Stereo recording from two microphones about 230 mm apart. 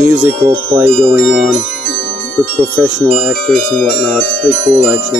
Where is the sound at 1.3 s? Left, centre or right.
Right.